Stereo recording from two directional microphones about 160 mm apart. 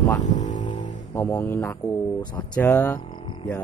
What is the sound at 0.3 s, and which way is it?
Music, 50° left (ahead or behind).